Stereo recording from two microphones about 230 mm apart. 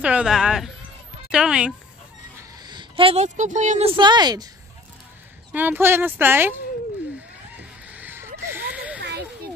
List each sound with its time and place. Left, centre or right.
0.0 s speech: centre
2.6 s a woman's voice: centre
5.5 s speech: centre
7.5 s fowl: centre